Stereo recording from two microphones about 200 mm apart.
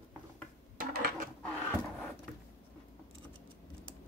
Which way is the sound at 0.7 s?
45° right (ahead or behind).